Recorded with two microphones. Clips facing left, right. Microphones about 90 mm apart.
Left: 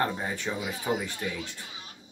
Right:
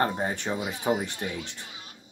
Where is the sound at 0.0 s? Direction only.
40° right (ahead or behind).